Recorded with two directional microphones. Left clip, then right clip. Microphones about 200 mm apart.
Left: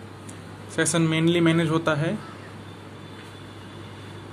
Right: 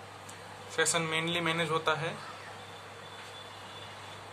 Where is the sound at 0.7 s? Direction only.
20° left (ahead or behind).